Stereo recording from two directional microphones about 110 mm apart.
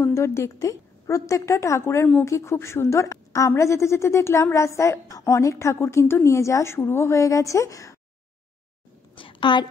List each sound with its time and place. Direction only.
0.0 s a woman's voice: 25° left (ahead or behind)
9.1 s a woman's voice: 50° left (ahead or behind)